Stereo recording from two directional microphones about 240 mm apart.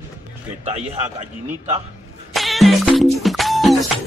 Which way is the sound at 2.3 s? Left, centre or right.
Centre.